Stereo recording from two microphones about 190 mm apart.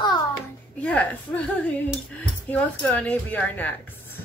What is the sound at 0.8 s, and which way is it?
Speech, 10° left (ahead or behind).